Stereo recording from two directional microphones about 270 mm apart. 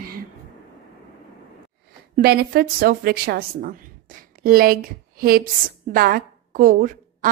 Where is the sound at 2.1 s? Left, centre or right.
Right.